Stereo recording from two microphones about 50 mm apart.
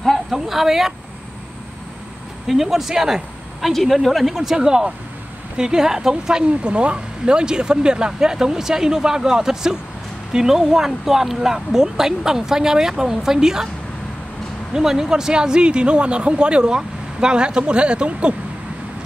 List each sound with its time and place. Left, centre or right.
0.0 s speech: centre
2.4 s a woman's voice: centre
4.6 s speech: centre
14.7 s speech: centre